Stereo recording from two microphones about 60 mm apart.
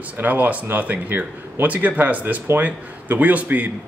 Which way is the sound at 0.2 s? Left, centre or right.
Right.